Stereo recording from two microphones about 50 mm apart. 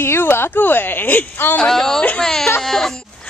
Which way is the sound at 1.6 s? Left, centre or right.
Centre.